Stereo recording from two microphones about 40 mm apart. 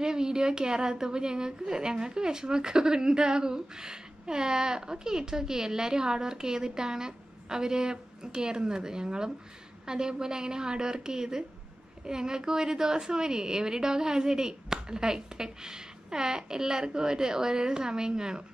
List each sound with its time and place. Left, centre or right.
0.0 s a woman's voice: centre